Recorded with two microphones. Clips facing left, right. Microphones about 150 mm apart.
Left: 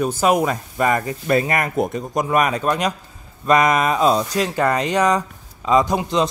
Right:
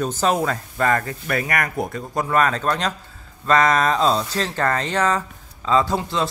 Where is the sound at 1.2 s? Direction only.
25° left (ahead or behind).